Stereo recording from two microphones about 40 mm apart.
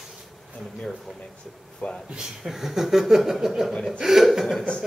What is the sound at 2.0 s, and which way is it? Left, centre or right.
Speech, right.